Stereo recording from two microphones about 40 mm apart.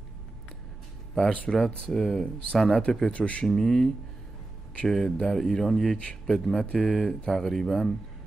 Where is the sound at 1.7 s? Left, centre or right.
Centre.